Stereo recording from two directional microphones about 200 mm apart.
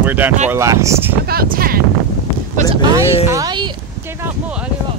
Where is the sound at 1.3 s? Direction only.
50° right (ahead or behind).